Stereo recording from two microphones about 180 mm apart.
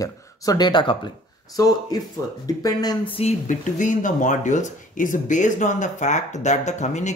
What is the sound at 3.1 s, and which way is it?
Speech, 35° left (ahead or behind).